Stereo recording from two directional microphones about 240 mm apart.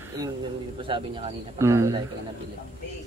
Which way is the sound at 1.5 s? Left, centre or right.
Centre.